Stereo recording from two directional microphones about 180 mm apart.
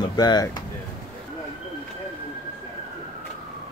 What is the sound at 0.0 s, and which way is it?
Speech, 25° left (ahead or behind).